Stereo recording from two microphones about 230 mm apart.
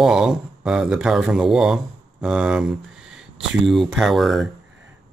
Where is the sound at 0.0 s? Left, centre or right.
Centre.